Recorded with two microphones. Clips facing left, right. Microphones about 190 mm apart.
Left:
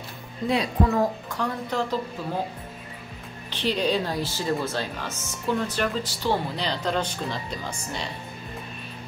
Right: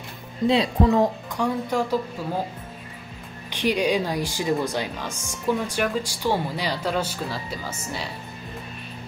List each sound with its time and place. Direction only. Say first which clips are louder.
0.5 s speech: right 3 dB; 25° right (ahead or behind)
1.4 s speech: right 4 dB; 10° right (ahead or behind)
3.4 s speech: right 3 dB; 10° right (ahead or behind)